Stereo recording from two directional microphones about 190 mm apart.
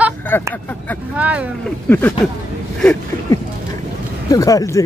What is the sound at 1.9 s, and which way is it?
Speech, 10° left (ahead or behind).